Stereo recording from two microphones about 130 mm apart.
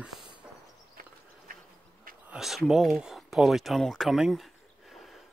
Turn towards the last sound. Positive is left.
turn(degrees=0)  # may be behind; listen again after turning